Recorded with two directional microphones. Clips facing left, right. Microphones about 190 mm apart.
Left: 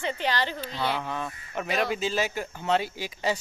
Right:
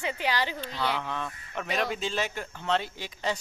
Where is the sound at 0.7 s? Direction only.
15° left (ahead or behind).